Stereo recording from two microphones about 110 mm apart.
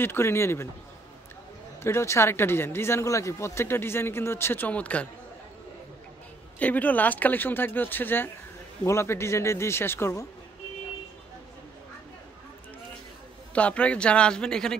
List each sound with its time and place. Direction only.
0.0 s speech: 20° left (ahead or behind)
1.8 s speech: 25° left (ahead or behind)
6.6 s speech: 15° left (ahead or behind)
13.6 s speech: 10° left (ahead or behind)